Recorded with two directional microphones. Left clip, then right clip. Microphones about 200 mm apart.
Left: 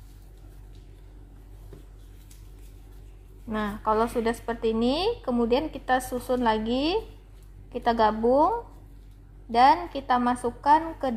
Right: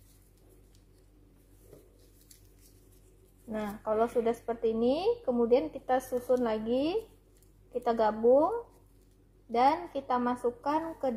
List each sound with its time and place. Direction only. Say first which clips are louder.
3.4 s a woman's voice: left 7 dB; 25° left (ahead or behind)
9.5 s a woman's voice: left 7 dB; 25° left (ahead or behind)